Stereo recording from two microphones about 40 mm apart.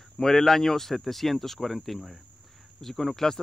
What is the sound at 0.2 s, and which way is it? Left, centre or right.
Speech, centre.